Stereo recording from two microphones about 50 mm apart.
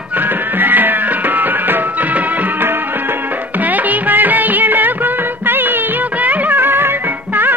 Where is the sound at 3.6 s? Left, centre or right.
Right.